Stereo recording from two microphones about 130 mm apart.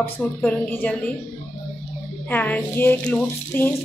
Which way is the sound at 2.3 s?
15° left (ahead or behind).